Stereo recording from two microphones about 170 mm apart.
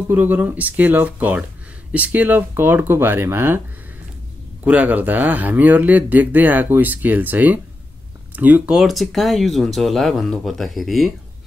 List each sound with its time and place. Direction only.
0.1 s speech: 10° right (ahead or behind)
4.6 s speech: 10° right (ahead or behind)